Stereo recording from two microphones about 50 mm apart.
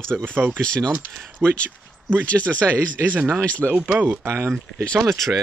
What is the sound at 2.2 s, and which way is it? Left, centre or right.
Speech, left.